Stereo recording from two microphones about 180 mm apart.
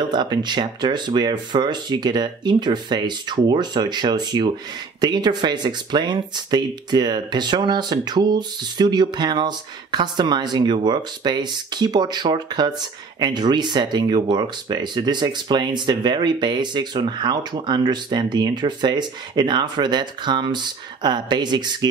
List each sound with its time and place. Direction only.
0.1 s speech: 25° right (ahead or behind)